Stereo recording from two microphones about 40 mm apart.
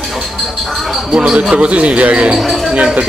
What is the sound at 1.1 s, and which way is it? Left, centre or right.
Speech, right.